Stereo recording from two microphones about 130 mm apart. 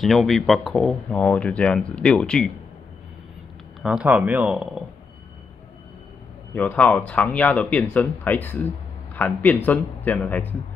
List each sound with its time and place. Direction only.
0.0 s speech: centre (ahead or behind)
3.8 s speech: 5° right (ahead or behind)
6.5 s speech: 10° left (ahead or behind)